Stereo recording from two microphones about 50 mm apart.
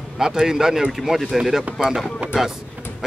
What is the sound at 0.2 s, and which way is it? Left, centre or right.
Speech, centre.